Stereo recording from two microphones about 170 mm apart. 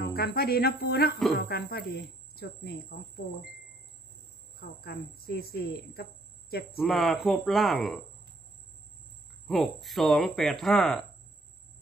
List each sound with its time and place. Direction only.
0.0 s a woman's voice: 65° left (ahead or behind)
4.6 s a woman's voice: 65° left (ahead or behind)
6.8 s speech: centre (ahead or behind)
9.5 s speech: centre (ahead or behind)